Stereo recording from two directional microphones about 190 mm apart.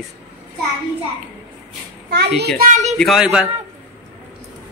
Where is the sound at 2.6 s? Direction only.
40° right (ahead or behind).